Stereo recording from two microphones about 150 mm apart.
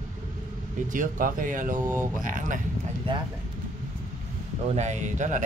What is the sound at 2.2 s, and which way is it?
Speech, 60° right (ahead or behind).